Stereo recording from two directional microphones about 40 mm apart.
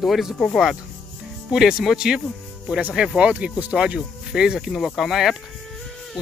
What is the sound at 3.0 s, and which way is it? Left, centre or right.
Speech, right.